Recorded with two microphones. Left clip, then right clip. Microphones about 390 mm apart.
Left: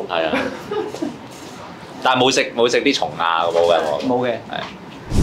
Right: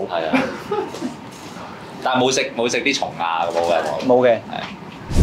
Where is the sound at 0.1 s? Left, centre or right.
Left.